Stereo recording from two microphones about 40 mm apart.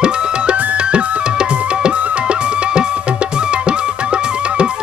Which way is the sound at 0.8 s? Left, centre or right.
Right.